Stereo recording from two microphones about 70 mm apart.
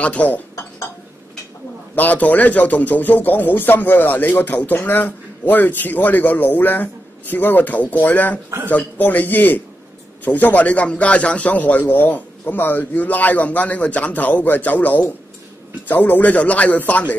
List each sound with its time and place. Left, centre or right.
0.0 s a man's voice: centre
2.0 s a man's voice: left